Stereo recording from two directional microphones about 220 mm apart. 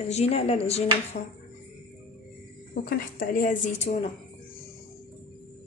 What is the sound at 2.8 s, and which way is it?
A woman's voice, 40° left (ahead or behind).